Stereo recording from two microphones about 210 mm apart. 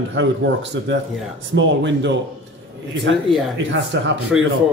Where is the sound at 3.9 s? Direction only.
60° right (ahead or behind).